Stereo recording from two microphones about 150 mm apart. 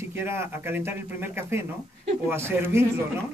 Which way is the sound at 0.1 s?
15° right (ahead or behind).